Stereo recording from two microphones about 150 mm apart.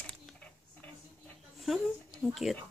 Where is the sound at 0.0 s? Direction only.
5° left (ahead or behind).